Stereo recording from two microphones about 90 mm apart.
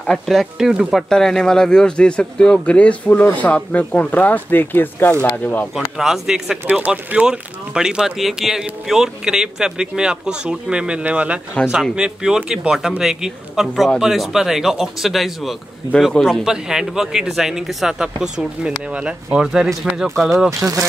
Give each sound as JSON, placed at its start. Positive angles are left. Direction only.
{"t": 0.0, "sound": "speech", "side_deg": 5}
{"t": 1.0, "sound": "speech", "side_deg": 5}
{"t": 5.9, "sound": "speech", "side_deg": -5}
{"t": 6.7, "sound": "speech", "side_deg": -15}
{"t": 20.4, "sound": "speech", "side_deg": -35}